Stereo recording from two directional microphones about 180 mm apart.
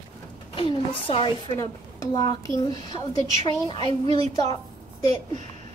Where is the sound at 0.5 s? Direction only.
30° left (ahead or behind).